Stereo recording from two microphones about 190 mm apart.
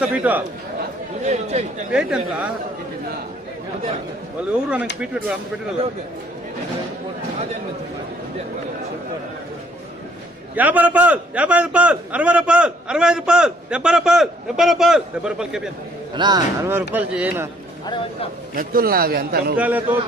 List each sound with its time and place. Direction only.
0.0 s speech: 10° right (ahead or behind)
1.2 s speech: 35° right (ahead or behind)
1.9 s a man's voice: 5° right (ahead or behind)
4.5 s a man's voice: 5° right (ahead or behind)
10.5 s a man's voice: 10° right (ahead or behind)
16.2 s a man's voice: 20° right (ahead or behind)
17.8 s speech: 25° left (ahead or behind)
18.5 s a man's voice: 50° right (ahead or behind)
19.5 s speech: 10° right (ahead or behind)